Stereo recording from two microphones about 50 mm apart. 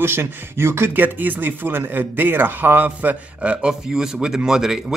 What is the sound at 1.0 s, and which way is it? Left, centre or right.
Speech, right.